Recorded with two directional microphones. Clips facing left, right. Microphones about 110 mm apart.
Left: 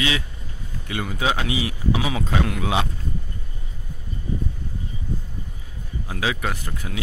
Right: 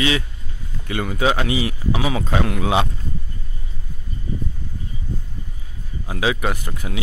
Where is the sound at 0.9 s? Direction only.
50° right (ahead or behind); by 2.8 s 30° right (ahead or behind).